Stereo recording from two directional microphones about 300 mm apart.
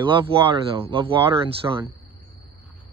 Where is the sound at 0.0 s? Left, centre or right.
Centre.